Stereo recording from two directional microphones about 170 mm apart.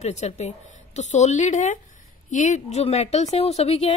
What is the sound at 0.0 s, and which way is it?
Speech, 40° left (ahead or behind).